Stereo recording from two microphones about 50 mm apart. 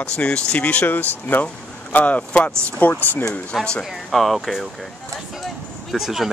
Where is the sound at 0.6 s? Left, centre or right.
Left.